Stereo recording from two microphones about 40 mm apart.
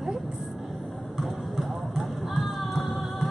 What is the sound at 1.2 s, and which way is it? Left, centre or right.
Music, centre.